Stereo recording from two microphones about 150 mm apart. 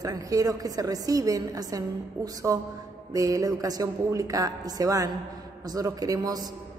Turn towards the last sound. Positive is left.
turn(degrees=-25)  # may be behind; listen again after turning